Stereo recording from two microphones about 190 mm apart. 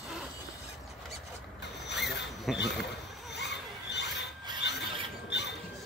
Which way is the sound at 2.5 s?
Centre (ahead or behind).